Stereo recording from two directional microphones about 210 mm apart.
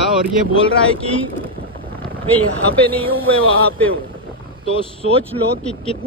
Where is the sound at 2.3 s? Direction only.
5° left (ahead or behind).